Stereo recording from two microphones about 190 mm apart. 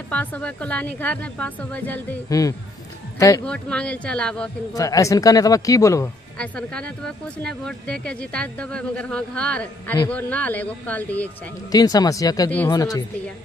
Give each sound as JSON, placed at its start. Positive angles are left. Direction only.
{"t": 0.1, "sound": "a woman's voice", "side_deg": 10}
{"t": 3.4, "sound": "speech", "side_deg": 5}
{"t": 4.7, "sound": "a woman's voice", "side_deg": 20}
{"t": 6.3, "sound": "a woman's voice", "side_deg": 5}
{"t": 11.7, "sound": "speech", "side_deg": 20}